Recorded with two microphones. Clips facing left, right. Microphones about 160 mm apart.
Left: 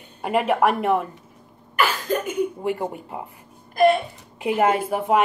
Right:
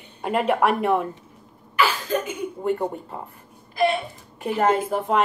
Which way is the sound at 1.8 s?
55° left (ahead or behind).